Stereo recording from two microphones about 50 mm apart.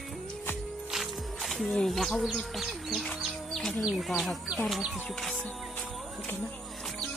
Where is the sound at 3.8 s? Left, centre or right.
Centre.